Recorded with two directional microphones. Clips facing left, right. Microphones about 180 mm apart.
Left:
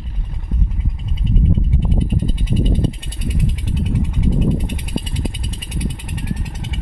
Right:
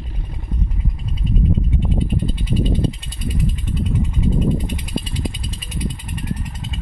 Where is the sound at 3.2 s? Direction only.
80° left.